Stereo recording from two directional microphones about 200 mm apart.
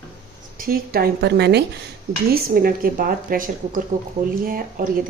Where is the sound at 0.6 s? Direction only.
50° right (ahead or behind).